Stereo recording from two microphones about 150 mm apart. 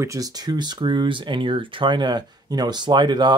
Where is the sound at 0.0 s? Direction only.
20° right (ahead or behind).